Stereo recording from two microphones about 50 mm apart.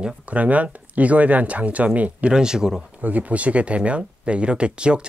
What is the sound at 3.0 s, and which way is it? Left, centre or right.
Speech, right.